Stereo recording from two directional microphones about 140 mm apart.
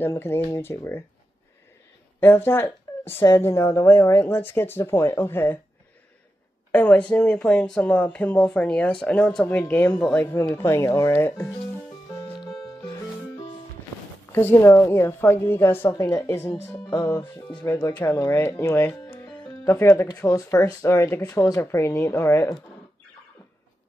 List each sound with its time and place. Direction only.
0.0 s speech: 15° left (ahead or behind)
2.1 s speech: 15° left (ahead or behind)
6.7 s speech: 10° left (ahead or behind)
12.4 s music: centre (ahead or behind)
14.3 s speech: 20° left (ahead or behind)
17.9 s speech: 15° left (ahead or behind)